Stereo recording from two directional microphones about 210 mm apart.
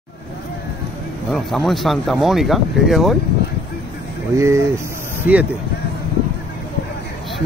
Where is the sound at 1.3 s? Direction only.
Centre (ahead or behind).